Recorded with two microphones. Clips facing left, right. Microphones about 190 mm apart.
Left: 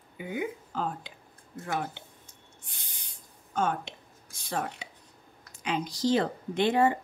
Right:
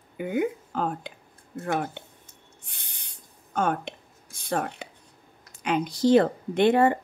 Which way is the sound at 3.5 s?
55° right (ahead or behind).